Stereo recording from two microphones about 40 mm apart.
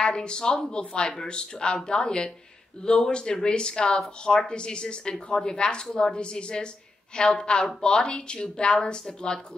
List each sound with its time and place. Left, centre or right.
0.0 s speech: left